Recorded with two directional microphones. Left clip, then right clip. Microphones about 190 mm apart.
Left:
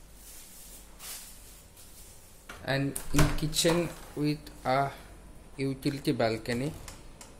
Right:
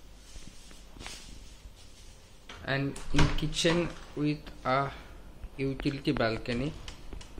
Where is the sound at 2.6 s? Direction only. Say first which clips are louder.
Left 1 dB; 15° left (ahead or behind).